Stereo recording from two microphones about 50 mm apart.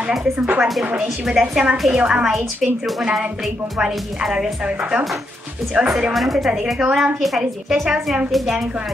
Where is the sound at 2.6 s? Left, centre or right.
Centre.